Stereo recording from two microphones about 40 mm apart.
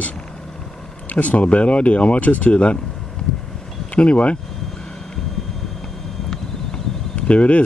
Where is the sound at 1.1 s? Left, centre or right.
Left.